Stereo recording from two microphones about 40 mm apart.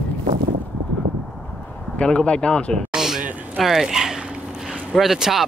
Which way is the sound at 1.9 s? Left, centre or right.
Left.